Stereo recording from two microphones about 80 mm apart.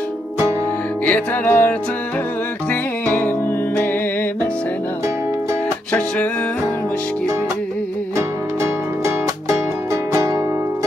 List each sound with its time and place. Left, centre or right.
1.0 s music: left
5.9 s music: centre
10.1 s music: right